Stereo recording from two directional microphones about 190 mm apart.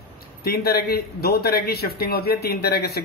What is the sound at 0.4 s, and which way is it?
A man's voice, 55° left (ahead or behind).